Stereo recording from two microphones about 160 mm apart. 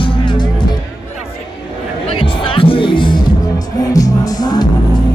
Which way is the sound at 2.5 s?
35° left (ahead or behind).